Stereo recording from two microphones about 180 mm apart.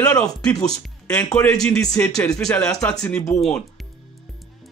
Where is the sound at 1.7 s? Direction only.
15° left (ahead or behind).